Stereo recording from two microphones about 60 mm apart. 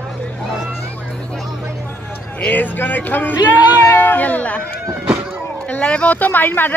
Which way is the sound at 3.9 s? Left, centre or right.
Left.